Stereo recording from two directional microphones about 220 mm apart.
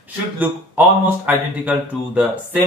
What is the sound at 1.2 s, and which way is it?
Speech, 10° right (ahead or behind).